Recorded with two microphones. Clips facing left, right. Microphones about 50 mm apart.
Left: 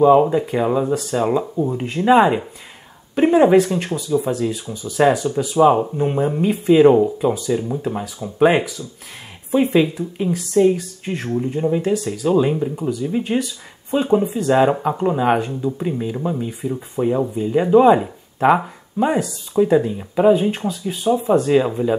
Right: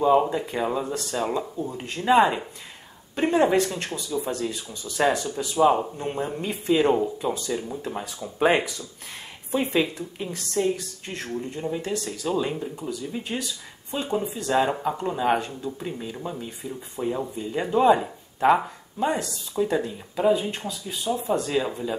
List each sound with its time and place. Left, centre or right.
0.0 s speech: centre